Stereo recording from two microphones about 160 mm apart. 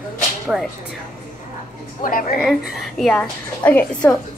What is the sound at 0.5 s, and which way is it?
Speech, 5° right (ahead or behind).